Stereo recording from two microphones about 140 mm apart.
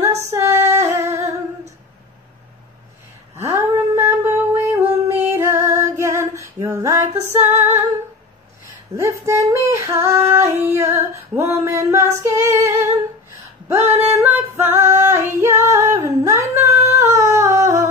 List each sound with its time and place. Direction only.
0.0 s female singing: 20° right (ahead or behind)
3.3 s a sound: 20° right (ahead or behind)
5.0 s female singing: 20° right (ahead or behind)